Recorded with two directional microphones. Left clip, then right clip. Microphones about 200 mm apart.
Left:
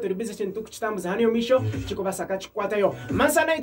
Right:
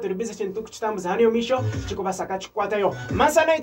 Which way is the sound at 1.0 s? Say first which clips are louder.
Right 4 dB; 15° left (ahead or behind).